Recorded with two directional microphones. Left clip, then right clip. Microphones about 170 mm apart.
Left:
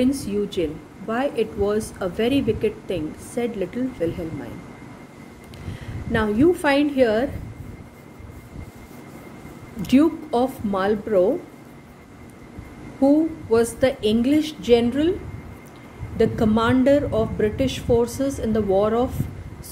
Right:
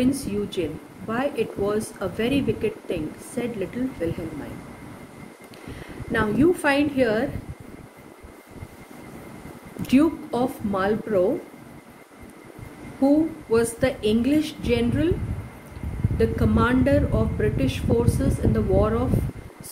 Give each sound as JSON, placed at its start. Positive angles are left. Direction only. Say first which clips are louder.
{"t": 0.0, "sound": "speech", "louder": "left 2 dB", "side_deg": 40}
{"t": 6.1, "sound": "speech", "louder": "left 2 dB", "side_deg": 35}
{"t": 9.8, "sound": "speech", "louder": "left 2 dB", "side_deg": 35}
{"t": 13.0, "sound": "speech", "louder": "left 2 dB", "side_deg": 35}
{"t": 16.2, "sound": "speech", "louder": "left 3 dB", "side_deg": 40}